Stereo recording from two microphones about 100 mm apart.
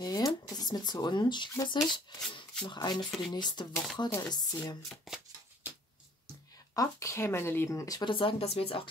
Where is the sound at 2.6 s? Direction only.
45° left (ahead or behind).